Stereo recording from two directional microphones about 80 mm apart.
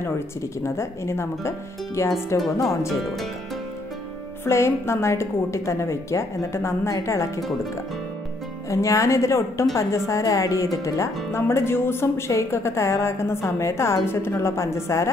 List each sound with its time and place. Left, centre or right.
0.7 s speech: left
4.5 s speech: left
8.6 s speech: left